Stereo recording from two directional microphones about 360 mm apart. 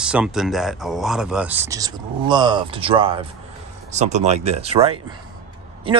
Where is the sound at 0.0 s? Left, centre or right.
Centre.